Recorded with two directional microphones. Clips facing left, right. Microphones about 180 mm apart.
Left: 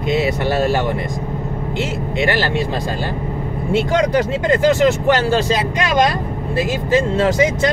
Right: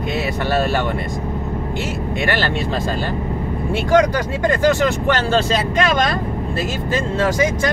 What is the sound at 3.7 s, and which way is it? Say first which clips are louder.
Speech: right 1 dB; 20° left (ahead or behind).